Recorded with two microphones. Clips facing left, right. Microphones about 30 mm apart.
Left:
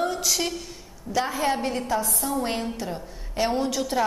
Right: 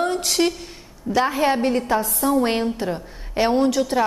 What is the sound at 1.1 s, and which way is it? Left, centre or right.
Speech, right.